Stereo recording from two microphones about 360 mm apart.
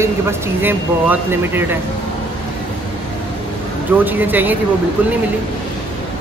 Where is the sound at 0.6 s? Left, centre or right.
Centre.